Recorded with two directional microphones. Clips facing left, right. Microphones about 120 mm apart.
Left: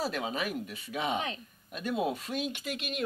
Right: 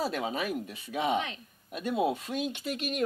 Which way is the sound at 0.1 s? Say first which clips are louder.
Right 2 dB; 35° right (ahead or behind).